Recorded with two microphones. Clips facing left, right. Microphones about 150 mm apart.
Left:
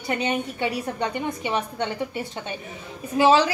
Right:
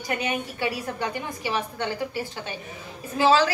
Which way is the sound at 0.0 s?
25° left (ahead or behind).